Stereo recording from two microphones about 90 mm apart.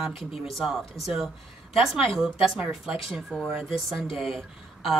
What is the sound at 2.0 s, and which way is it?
A woman's voice, centre (ahead or behind).